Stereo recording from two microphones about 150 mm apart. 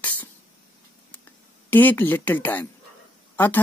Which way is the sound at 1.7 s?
10° left (ahead or behind).